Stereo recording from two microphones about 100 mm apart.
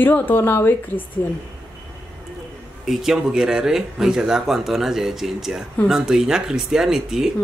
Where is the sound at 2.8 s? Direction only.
5° right (ahead or behind).